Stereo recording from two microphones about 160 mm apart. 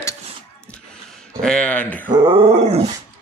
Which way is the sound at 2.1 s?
35° right (ahead or behind).